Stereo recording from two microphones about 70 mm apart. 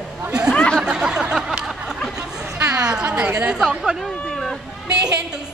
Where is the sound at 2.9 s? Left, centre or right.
Centre.